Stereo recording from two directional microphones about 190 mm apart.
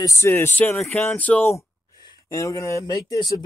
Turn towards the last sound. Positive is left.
turn(degrees=20)  # may be behind; listen again after turning